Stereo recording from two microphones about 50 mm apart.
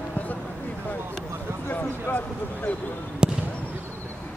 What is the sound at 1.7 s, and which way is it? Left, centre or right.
Speech, left.